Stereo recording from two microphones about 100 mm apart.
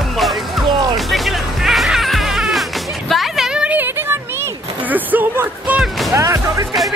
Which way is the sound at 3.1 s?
Centre (ahead or behind).